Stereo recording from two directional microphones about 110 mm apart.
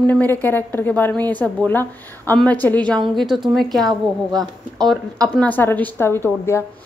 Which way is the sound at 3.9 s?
40° right (ahead or behind).